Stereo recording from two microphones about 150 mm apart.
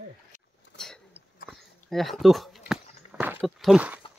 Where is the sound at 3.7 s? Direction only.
10° right (ahead or behind).